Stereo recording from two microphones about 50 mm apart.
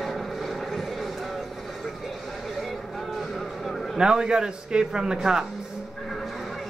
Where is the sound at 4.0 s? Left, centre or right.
Centre.